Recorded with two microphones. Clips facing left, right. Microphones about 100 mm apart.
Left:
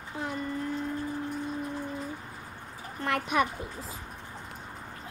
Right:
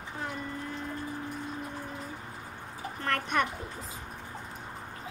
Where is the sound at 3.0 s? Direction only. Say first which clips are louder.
Left 2 dB; 10° left (ahead or behind).